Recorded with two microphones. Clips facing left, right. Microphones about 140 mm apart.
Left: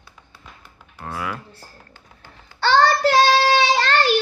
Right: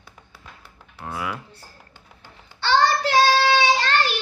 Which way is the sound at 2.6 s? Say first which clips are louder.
Left 3 dB; 45° left (ahead or behind).